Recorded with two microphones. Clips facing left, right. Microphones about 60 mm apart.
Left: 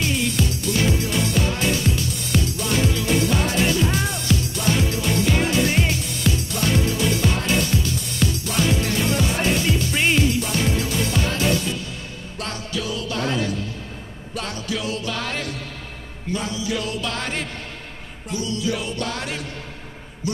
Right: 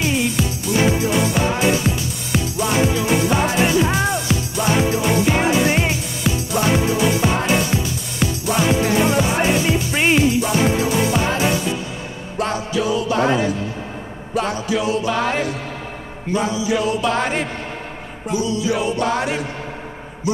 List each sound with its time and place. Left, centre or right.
0.0 s music: centre